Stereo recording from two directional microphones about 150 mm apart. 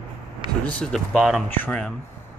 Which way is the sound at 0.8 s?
5° left (ahead or behind).